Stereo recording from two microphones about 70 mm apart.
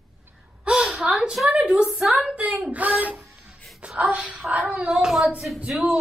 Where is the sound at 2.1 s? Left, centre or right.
Centre.